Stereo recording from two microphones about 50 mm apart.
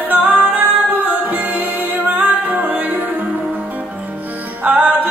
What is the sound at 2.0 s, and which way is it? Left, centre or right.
Music, right.